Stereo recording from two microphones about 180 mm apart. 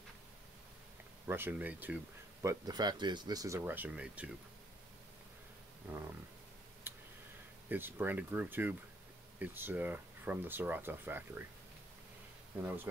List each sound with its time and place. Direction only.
1.2 s speech: 15° right (ahead or behind)
2.4 s speech: 20° right (ahead or behind); by 4.3 s 5° right (ahead or behind)
5.9 s speech: 10° right (ahead or behind)
6.8 s a sound: 10° right (ahead or behind)
7.7 s speech: 10° right (ahead or behind)